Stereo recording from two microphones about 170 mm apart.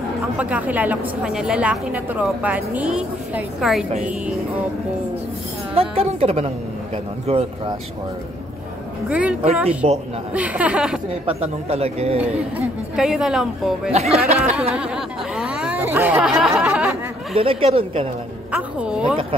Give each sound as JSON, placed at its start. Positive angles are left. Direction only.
{"t": 0.4, "sound": "a woman's voice", "side_deg": -10}
{"t": 5.8, "sound": "speech", "side_deg": -35}
{"t": 9.1, "sound": "a woman's voice", "side_deg": -5}
{"t": 9.8, "sound": "speech", "side_deg": -40}
{"t": 10.3, "sound": "a woman's voice", "side_deg": -10}
{"t": 11.2, "sound": "speech", "side_deg": -35}
{"t": 12.2, "sound": "speech", "side_deg": -5}
{"t": 13.9, "sound": "speech", "side_deg": -40}
{"t": 14.8, "sound": "chatter", "side_deg": -5}
{"t": 17.4, "sound": "speech", "side_deg": -35}
{"t": 18.5, "sound": "speech", "side_deg": -5}